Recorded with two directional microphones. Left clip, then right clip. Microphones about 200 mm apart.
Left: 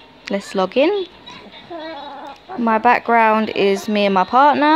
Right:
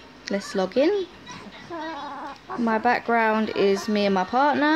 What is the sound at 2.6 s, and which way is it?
Speech, 25° left (ahead or behind).